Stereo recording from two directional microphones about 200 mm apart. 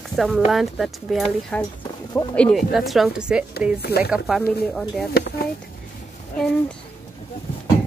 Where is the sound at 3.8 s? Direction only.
55° left (ahead or behind).